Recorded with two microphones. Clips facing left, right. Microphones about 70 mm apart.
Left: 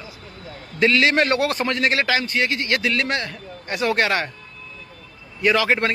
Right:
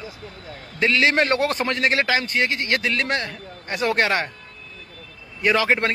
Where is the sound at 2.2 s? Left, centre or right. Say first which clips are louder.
Even; right.